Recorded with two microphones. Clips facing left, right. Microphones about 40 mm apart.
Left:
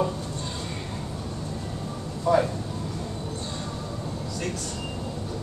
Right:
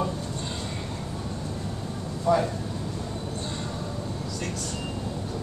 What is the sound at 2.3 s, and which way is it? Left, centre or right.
Speech, centre.